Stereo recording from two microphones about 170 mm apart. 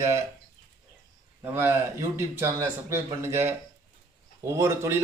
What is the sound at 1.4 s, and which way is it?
A man's voice, 15° right (ahead or behind).